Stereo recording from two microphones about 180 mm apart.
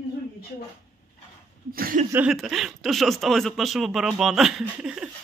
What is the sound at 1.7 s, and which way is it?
Speech, 55° right (ahead or behind).